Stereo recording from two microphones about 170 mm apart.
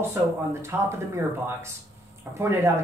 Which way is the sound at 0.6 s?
15° right (ahead or behind).